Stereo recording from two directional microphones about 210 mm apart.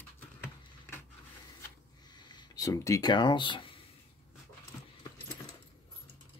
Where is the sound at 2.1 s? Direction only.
20° left (ahead or behind).